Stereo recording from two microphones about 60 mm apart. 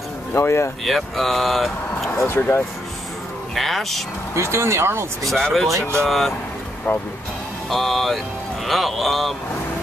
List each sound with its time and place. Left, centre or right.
0.4 s speech: left
0.8 s speech: centre
2.1 s speech: left
3.5 s speech: centre
4.4 s speech: right
5.3 s speech: centre
5.7 s speech: right
6.0 s speech: centre
6.9 s speech: left
7.7 s speech: centre